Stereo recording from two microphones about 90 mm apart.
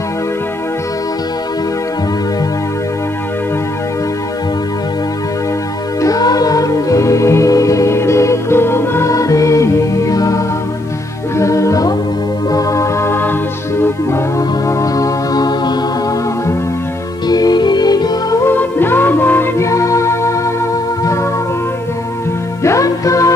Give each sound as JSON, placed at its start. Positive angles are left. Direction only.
{"t": 5.9, "sound": "music", "side_deg": 40}
{"t": 9.1, "sound": "music", "side_deg": 40}
{"t": 14.7, "sound": "music", "side_deg": 40}
{"t": 17.3, "sound": "music", "side_deg": 50}
{"t": 18.4, "sound": "music", "side_deg": 25}
{"t": 22.6, "sound": "music", "side_deg": 35}